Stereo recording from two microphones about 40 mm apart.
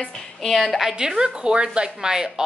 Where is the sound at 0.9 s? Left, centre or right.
Right.